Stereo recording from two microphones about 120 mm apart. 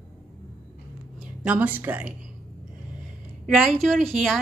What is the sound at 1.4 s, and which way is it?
Speech, 15° right (ahead or behind).